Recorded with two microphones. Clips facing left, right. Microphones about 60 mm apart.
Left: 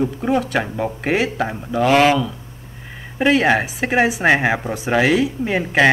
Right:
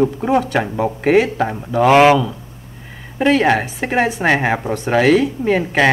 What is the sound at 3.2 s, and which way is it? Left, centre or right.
Speech, centre.